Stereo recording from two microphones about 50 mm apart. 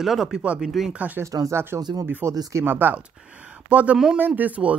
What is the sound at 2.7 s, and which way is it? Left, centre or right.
Speech, right.